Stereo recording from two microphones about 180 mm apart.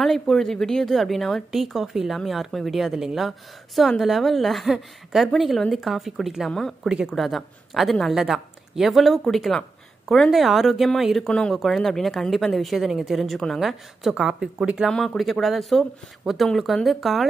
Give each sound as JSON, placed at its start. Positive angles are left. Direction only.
{"t": 0.0, "sound": "a woman's voice", "side_deg": 0}